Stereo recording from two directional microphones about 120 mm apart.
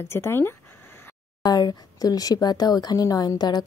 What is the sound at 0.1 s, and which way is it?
Speech, 20° left (ahead or behind).